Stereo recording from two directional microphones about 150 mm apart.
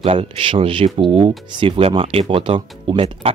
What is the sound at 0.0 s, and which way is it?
Speech, 40° right (ahead or behind).